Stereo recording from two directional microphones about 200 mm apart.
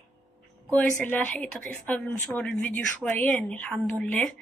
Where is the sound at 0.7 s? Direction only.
5° left (ahead or behind).